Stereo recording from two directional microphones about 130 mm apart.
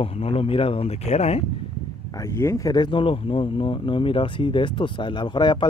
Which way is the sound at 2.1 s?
20° left (ahead or behind).